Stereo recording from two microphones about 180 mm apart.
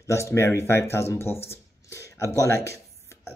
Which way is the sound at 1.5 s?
15° left (ahead or behind).